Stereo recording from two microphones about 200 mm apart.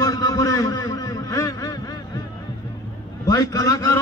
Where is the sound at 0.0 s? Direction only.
20° left (ahead or behind).